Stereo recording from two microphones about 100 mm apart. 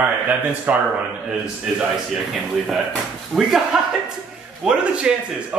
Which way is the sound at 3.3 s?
5° right (ahead or behind).